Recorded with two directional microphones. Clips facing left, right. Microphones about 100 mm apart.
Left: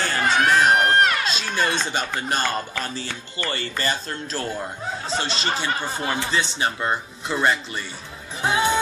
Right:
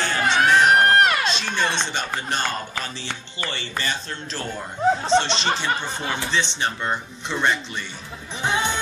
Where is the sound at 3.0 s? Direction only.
40° left (ahead or behind).